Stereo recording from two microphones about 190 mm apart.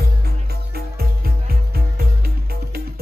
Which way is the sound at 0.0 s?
55° right (ahead or behind).